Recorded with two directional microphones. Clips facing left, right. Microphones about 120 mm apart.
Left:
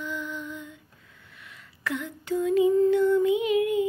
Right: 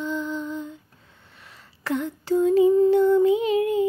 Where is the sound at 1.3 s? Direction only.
30° right (ahead or behind).